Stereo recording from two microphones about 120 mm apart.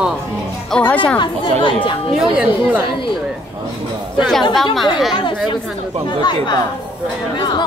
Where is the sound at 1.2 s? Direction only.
45° left (ahead or behind).